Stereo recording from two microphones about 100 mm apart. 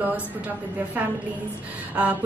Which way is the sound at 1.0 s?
20° right (ahead or behind).